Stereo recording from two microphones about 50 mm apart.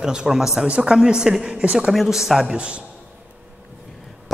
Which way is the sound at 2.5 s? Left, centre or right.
Right.